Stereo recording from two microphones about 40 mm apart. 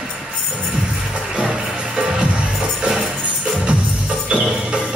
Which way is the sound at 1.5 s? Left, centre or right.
Right.